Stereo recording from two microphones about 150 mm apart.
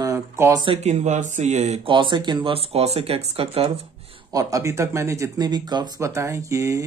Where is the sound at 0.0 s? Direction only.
20° right (ahead or behind).